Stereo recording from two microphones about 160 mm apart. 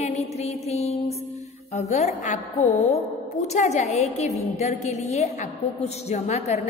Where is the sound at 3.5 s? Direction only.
45° left (ahead or behind).